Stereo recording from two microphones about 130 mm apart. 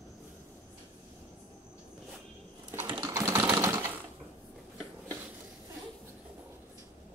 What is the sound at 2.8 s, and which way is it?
Sewing machine, 35° right (ahead or behind).